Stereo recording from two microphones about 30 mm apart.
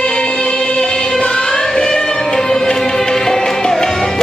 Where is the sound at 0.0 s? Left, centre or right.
Left.